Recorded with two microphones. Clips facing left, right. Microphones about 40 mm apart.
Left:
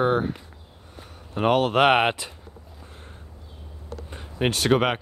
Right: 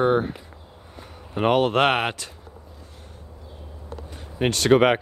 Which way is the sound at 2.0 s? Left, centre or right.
Centre.